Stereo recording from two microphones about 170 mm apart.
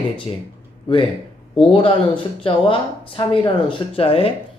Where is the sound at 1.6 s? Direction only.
30° left (ahead or behind).